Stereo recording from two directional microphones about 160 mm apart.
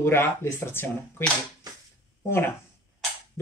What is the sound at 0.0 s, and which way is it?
Speech, 15° left (ahead or behind).